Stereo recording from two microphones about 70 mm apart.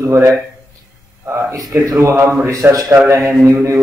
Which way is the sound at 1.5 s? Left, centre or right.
Right.